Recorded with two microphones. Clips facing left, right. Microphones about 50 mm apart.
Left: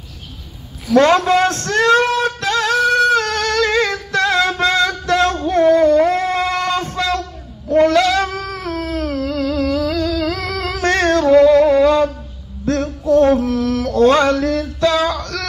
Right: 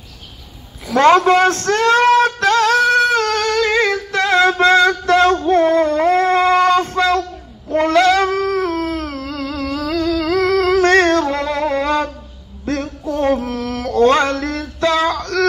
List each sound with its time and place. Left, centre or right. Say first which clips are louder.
0.9 s a sound: right 1 dB; right
7.7 s cat: even; right
9.8 s music: right 1 dB; right
12.6 s male singing: left 4 dB; right
14.3 s female singing: left 4 dB; right